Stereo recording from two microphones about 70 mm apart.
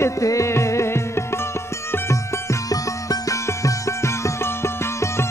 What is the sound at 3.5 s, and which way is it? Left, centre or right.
Music, left.